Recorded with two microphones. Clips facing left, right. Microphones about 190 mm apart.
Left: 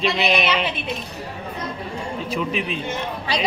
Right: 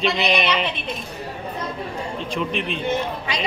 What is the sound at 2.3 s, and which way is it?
Speech, 5° left (ahead or behind).